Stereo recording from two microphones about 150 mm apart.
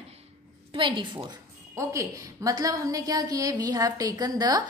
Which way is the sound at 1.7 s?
20° right (ahead or behind).